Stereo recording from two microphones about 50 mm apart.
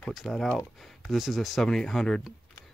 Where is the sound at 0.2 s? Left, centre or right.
Centre.